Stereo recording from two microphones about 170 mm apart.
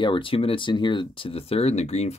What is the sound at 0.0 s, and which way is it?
Speech, 30° left (ahead or behind).